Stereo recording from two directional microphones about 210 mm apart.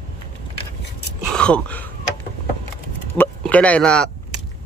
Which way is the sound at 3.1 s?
10° left (ahead or behind).